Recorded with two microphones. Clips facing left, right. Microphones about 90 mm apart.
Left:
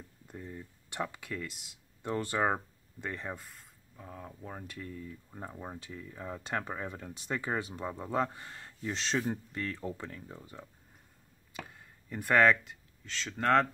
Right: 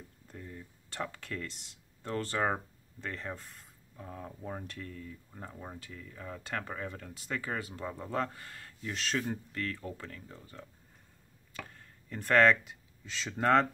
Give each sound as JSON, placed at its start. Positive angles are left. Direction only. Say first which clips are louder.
{"t": 0.3, "sound": "speech", "louder": "left 3 dB", "side_deg": 15}
{"t": 3.4, "sound": "rub", "louder": "even", "side_deg": 0}
{"t": 4.8, "sound": "speech", "louder": "left 2 dB", "side_deg": 15}
{"t": 11.5, "sound": "a sound", "louder": "left 1 dB", "side_deg": 15}
{"t": 12.6, "sound": "speech", "louder": "even", "side_deg": -10}